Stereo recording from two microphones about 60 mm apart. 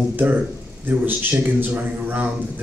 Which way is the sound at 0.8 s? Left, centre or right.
Right.